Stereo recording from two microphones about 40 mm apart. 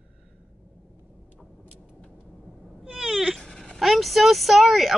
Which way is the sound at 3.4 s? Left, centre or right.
Centre.